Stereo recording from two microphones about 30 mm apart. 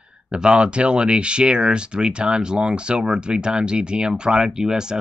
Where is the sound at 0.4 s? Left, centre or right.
Right.